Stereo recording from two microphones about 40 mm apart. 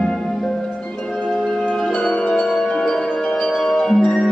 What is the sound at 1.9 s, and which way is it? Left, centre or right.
Music, left.